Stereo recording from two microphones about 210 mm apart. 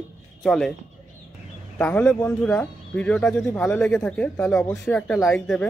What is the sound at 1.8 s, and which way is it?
Speech, 5° left (ahead or behind).